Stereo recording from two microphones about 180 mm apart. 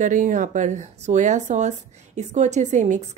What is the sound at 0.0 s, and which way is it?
A woman's voice, 45° right (ahead or behind).